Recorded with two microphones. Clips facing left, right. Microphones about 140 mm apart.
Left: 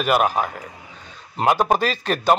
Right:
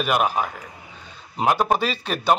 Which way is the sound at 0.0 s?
Centre (ahead or behind).